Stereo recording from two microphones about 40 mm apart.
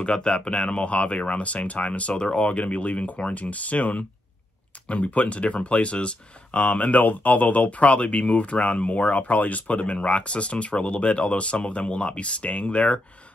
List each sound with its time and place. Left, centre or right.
0.0 s speech: left